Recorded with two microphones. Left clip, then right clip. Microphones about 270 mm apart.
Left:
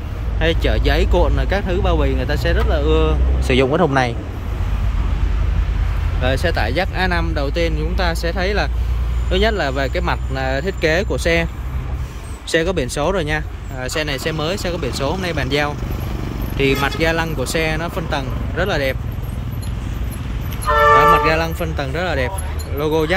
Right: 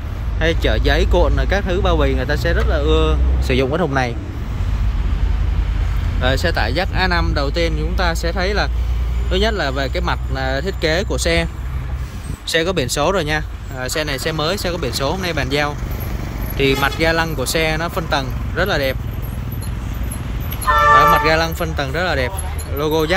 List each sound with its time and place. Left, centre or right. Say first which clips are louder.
0.4 s speech: right 1 dB; centre
6.2 s speech: right 1 dB; centre
12.4 s speech: even; centre
20.6 s vehicle: even; left
21.3 s speech: right 2 dB; centre